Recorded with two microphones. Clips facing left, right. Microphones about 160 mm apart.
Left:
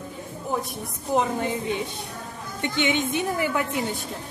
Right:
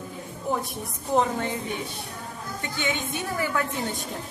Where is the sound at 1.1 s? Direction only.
5° left (ahead or behind).